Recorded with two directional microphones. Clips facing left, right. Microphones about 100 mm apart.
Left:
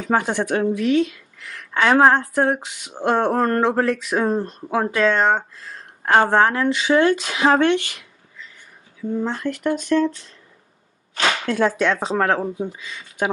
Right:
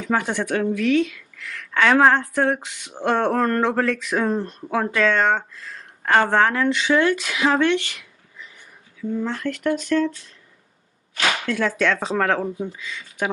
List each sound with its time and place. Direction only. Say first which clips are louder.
0.2 s a woman's voice: left 2 dB; 20° left (ahead or behind)
6.6 s speech: even; 10° left (ahead or behind)
6.9 s a woman's voice: left 4 dB; 25° left (ahead or behind)
9.2 s a woman's voice: left 1 dB; 20° left (ahead or behind)
11.8 s a woman's voice: left 1 dB; 20° left (ahead or behind)